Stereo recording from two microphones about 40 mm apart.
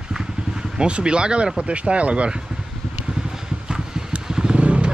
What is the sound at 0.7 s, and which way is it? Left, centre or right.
Speech, right.